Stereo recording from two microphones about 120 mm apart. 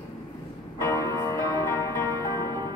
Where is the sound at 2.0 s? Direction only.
35° right (ahead or behind).